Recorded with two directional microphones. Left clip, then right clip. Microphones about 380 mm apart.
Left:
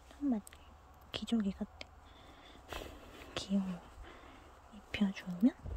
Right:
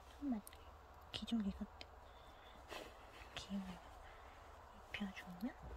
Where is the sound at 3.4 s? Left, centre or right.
Centre.